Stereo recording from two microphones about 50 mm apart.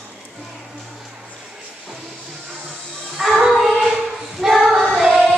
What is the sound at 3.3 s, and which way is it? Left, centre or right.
Singing, centre.